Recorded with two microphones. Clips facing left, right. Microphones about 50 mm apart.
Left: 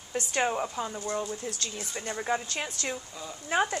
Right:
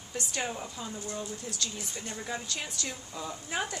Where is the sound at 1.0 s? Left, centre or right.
Left.